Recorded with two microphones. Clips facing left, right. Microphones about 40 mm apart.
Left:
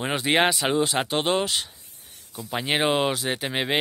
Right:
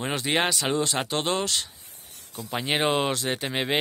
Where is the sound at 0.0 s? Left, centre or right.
Centre.